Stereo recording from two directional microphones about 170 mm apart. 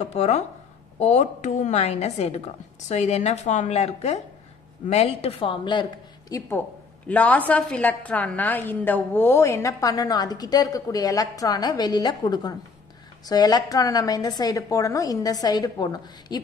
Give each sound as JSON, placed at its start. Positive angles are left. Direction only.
{"t": 0.1, "sound": "a woman's voice", "side_deg": 40}
{"t": 7.1, "sound": "a woman's voice", "side_deg": 10}